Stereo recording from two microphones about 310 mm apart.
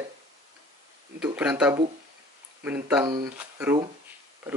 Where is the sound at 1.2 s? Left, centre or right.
Centre.